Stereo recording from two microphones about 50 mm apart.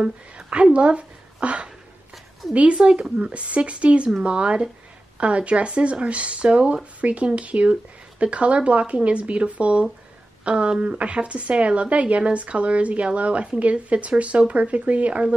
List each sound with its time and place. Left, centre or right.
0.0 s a woman's voice: centre